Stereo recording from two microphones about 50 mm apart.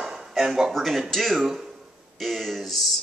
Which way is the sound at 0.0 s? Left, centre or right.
Centre.